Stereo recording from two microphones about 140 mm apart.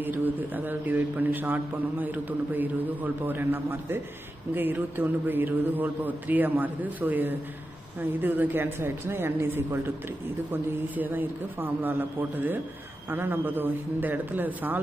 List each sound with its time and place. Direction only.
0.0 s a man's voice: 15° right (ahead or behind)